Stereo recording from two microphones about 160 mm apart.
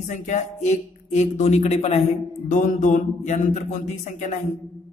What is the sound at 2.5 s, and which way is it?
A man's voice, 55° left (ahead or behind).